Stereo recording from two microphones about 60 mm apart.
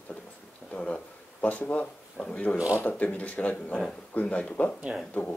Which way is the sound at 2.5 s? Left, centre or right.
Centre.